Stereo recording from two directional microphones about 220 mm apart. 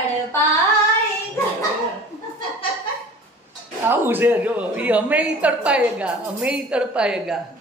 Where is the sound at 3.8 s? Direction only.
10° right (ahead or behind).